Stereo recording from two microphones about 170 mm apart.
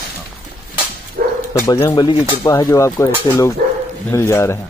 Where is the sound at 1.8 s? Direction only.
25° left (ahead or behind).